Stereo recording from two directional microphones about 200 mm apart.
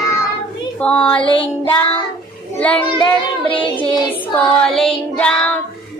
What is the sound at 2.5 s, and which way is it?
Child singing, 5° left (ahead or behind).